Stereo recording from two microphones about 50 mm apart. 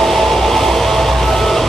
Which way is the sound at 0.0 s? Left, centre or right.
Centre.